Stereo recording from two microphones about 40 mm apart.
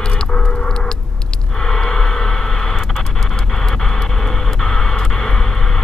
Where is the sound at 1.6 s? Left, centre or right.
Centre.